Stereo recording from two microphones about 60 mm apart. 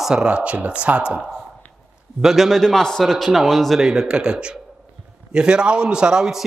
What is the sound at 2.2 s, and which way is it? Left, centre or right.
A man's voice, centre.